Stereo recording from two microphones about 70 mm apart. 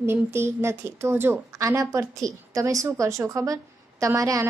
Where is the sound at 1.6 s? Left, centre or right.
Right.